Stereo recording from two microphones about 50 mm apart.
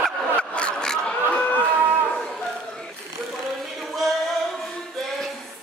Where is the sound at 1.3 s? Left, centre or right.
Left.